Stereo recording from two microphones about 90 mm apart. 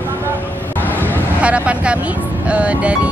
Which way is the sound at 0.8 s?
20° left (ahead or behind).